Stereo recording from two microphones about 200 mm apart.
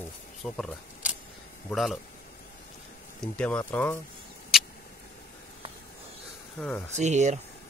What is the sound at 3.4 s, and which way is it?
Speech, 5° left (ahead or behind).